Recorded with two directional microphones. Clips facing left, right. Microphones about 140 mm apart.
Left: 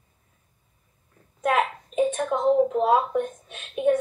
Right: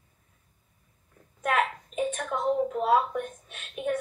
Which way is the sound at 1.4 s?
20° left (ahead or behind).